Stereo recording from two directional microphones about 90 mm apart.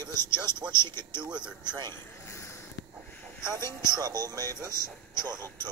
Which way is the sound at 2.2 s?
30° left (ahead or behind).